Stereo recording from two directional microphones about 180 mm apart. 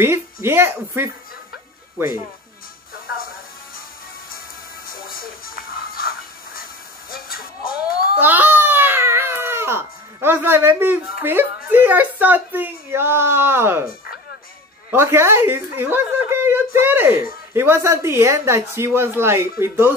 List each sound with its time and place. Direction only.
0.0 s speech: 15° right (ahead or behind)
5.1 s music: 55° left (ahead or behind)
7.3 s baby cry: 5° right (ahead or behind)
11.1 s speech: 5° right (ahead or behind)
14.9 s speech: 15° right (ahead or behind)